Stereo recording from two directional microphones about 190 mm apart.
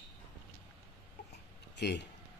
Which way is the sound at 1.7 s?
65° left (ahead or behind).